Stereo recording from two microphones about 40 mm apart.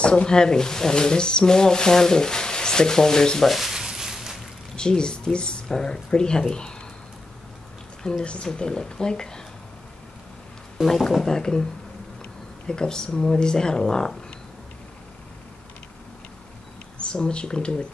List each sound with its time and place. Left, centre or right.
0.0 s speech: left
3.4 s sizzle: centre
4.7 s speech: centre
5.7 s speech: centre
8.0 s speech: left
10.9 s speech: centre
12.6 s speech: centre
17.0 s speech: left